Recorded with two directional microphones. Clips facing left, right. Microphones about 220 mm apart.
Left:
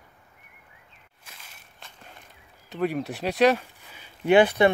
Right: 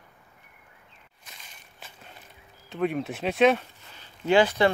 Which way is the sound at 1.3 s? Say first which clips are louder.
Even; 5° right (ahead or behind).